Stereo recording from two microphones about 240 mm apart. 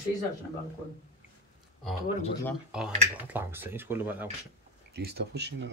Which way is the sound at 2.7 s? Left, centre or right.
Centre.